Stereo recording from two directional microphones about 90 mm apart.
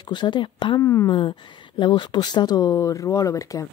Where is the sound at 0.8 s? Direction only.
35° left (ahead or behind).